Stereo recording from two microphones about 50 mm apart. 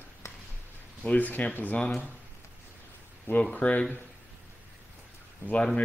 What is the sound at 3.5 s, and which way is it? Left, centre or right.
Speech, left.